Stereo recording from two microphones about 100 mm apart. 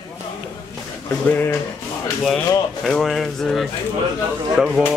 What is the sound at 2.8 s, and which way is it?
Speech, 5° left (ahead or behind).